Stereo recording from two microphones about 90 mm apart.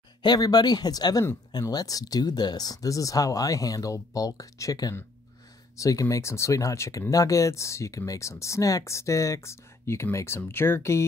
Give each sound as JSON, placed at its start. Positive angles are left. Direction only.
{"t": 0.2, "sound": "speech", "side_deg": 50}